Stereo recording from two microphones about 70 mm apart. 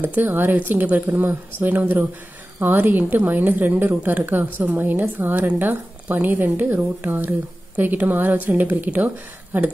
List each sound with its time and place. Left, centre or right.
0.0 s a woman's voice: right